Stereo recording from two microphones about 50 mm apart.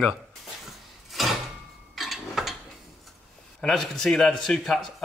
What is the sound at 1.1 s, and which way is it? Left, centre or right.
Door, centre.